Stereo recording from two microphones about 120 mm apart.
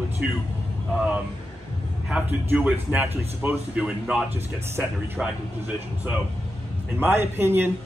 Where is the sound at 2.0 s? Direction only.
10° right (ahead or behind).